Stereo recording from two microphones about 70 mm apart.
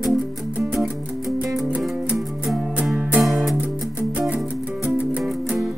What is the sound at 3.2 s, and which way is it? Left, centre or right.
Music, centre.